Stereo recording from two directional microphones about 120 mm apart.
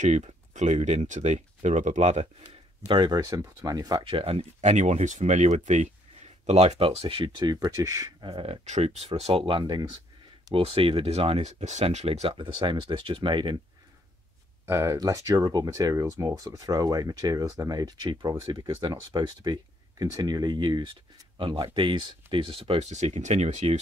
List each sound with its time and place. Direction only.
0.0 s speech: 80° right
2.9 s speech: 35° right (ahead or behind)
4.0 s speech: 50° right (ahead or behind)
7.4 s speech: 30° right (ahead or behind)
8.2 s speech: 50° right (ahead or behind)
14.7 s speech: 25° right (ahead or behind); by 22.8 s 50° right (ahead or behind)
22.8 s speech: 70° right (ahead or behind)